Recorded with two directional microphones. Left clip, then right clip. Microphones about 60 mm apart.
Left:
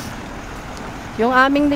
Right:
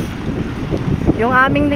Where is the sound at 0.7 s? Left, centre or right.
Left.